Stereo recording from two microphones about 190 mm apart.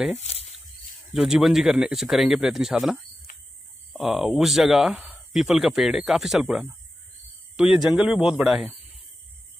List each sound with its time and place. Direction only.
0.2 s speech: 35° left (ahead or behind)
1.1 s speech: centre (ahead or behind)